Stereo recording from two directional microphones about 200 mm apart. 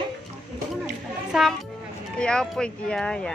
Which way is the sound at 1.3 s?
Centre (ahead or behind).